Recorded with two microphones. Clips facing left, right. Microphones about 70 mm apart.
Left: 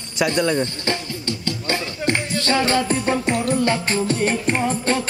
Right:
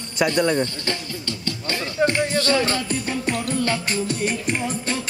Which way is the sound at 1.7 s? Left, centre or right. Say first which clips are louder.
Right 2 dB; left.